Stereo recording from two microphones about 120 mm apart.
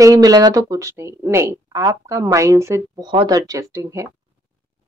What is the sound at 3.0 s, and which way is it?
Speech, 35° right (ahead or behind).